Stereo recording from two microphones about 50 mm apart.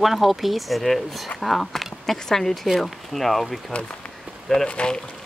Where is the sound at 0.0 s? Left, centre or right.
Centre.